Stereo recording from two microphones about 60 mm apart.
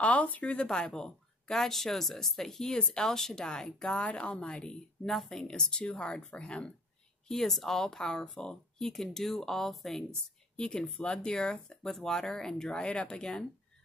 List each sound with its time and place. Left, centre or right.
0.0 s speech: left
5.0 s speech: centre
7.2 s speech: centre
10.5 s speech: centre